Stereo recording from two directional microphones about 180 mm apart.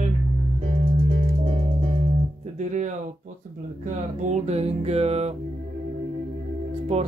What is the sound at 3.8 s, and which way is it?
Music, 40° right (ahead or behind).